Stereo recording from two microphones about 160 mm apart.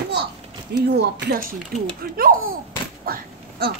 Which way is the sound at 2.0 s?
65° right (ahead or behind).